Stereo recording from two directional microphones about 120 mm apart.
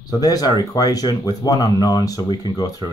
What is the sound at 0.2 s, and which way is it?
Speech, 35° left (ahead or behind).